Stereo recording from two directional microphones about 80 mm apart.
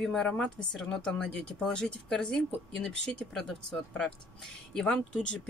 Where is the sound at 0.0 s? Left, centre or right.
Centre.